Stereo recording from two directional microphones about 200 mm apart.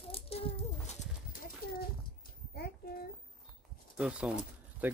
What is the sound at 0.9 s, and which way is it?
Bird, 45° left (ahead or behind).